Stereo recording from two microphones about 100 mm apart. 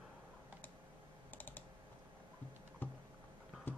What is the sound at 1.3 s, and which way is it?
Computer keyboard, 20° left (ahead or behind).